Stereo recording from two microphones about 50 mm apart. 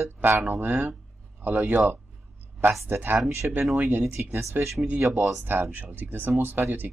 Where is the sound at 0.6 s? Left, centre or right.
Right.